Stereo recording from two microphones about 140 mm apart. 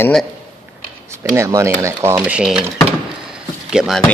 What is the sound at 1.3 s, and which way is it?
Speech, 20° right (ahead or behind).